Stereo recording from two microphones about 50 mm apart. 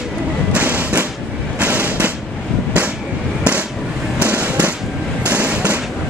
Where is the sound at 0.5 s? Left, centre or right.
Right.